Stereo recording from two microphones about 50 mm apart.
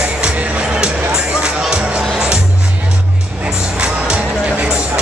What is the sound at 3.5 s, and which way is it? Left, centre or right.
Music, centre.